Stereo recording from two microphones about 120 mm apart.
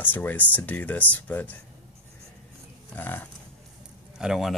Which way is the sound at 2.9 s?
15° left (ahead or behind).